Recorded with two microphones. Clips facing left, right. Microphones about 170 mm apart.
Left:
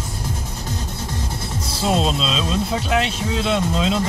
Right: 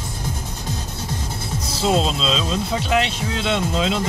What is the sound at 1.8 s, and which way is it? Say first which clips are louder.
Speech: even; 5° left (ahead or behind).